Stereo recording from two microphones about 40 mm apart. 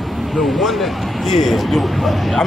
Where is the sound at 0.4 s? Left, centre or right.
Centre.